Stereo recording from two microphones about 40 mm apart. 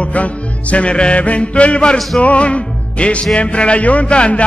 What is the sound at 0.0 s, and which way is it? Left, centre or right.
Music, left.